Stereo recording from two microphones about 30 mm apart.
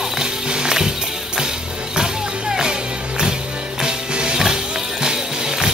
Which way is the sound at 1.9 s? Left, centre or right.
Right.